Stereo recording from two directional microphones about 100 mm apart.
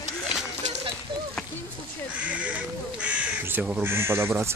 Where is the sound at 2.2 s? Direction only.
15° right (ahead or behind).